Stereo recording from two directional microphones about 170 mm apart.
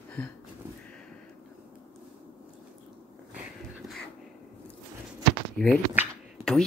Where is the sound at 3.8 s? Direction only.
Centre (ahead or behind).